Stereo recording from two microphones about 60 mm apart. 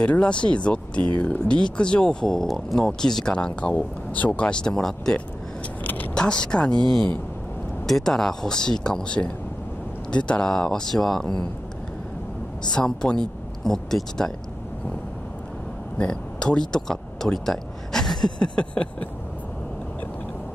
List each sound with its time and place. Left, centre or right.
0.0 s speech: centre
12.7 s speech: centre
16.0 s speech: centre
18.4 s speech: centre